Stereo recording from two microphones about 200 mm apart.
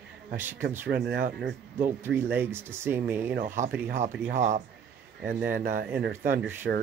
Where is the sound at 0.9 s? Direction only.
50° right (ahead or behind).